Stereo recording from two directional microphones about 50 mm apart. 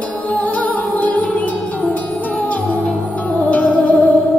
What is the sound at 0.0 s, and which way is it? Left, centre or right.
Music, left.